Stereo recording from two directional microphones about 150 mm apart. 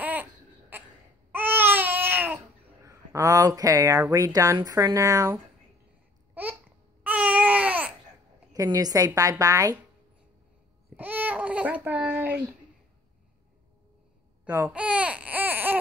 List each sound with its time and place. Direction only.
0.0 s cough: 10° right (ahead or behind)
1.3 s babbling: 15° right (ahead or behind)
7.0 s baby cry: 10° right (ahead or behind)
8.5 s a woman's voice: 25° right (ahead or behind)
11.0 s speech: 10° right (ahead or behind)
14.4 s babbling: 15° right (ahead or behind)
14.7 s baby cry: 10° right (ahead or behind)